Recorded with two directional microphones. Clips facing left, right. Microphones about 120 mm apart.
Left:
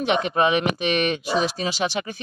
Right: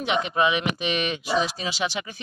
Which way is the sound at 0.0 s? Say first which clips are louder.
Left 3 dB; 50° left (ahead or behind).